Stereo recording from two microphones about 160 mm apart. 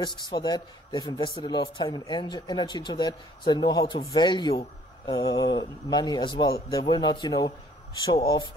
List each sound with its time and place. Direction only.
0.0 s a man's voice: 30° left (ahead or behind)